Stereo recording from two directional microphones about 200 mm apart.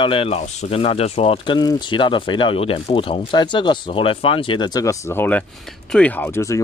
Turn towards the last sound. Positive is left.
turn(degrees=15)  # may be behind; listen again after turning